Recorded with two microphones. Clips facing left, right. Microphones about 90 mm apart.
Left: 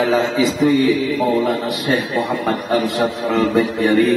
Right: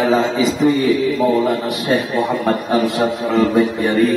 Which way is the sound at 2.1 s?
Centre (ahead or behind).